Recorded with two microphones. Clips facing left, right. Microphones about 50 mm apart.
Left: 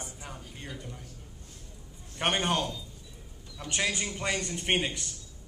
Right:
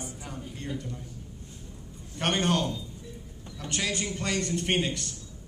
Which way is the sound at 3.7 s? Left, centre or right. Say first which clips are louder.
Even; centre.